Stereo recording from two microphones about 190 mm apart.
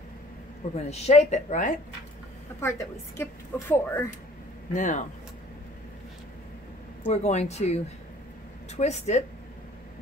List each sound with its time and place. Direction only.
0.7 s speech: 35° left (ahead or behind)
2.6 s a woman's voice: 15° left (ahead or behind)
4.7 s speech: 40° left (ahead or behind)
7.1 s speech: 35° left (ahead or behind)